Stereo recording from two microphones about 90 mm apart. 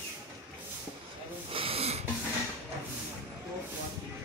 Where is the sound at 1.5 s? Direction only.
90° right.